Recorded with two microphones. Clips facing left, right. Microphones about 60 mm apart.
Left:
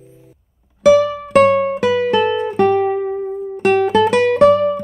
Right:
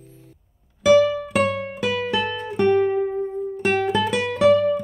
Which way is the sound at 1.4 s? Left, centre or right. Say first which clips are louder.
Left 11 dB; left.